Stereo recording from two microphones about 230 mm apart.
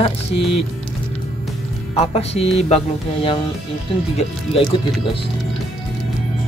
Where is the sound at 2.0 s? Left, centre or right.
Left.